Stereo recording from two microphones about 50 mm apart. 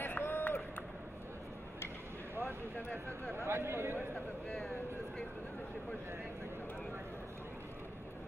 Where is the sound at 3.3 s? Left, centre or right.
Right.